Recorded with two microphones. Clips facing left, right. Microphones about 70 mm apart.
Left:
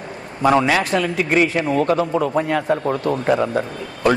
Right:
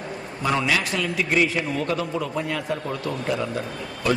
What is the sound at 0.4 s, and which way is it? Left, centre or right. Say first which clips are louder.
A man's voice: left 7 dB; left.